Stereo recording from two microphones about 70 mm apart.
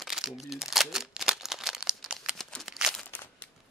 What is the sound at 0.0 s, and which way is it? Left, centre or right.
Crumpling, centre.